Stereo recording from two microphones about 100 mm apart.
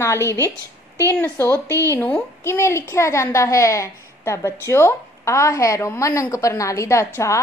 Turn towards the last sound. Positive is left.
turn(degrees=30)  # may be behind; listen again after turning